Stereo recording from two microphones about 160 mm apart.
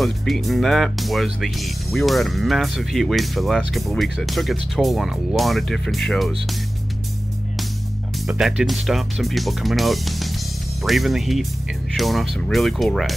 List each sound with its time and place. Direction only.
0.0 s speech: centre (ahead or behind)
8.3 s speech: 5° right (ahead or behind)